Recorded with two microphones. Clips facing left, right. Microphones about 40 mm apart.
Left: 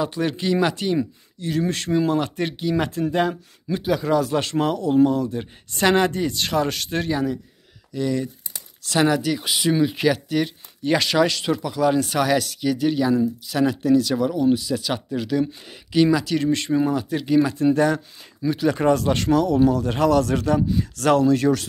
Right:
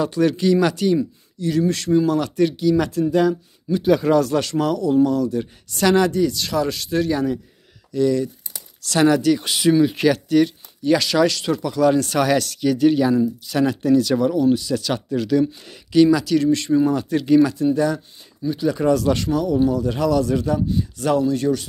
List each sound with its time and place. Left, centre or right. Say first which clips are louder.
0.0 s speech: right 5 dB; centre
1.4 s speech: right 4 dB; left
3.8 s speech: right 5 dB; centre
4.4 s speech: right 2 dB; left
7.9 s speech: right 5 dB; centre
10.8 s speech: right 2 dB; left
16.9 s speech: right 4 dB; centre
17.7 s speech: left 1 dB; left
18.5 s a man's voice: even; left
18.8 s speech: right 4 dB; left
19.2 s a man's voice: left 1 dB; left